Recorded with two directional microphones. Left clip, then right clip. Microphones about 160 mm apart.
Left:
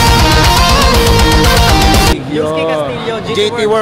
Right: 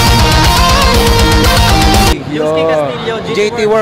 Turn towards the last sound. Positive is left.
turn(degrees=-15)  # may be behind; listen again after turning